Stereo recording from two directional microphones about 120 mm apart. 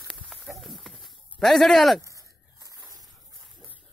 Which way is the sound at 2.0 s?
25° right (ahead or behind).